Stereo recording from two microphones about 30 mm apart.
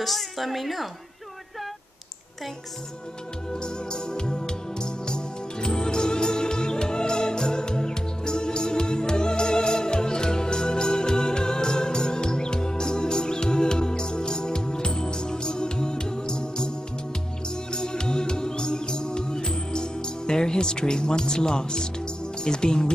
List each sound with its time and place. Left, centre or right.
0.0 s a woman's voice: centre
3.5 s music: left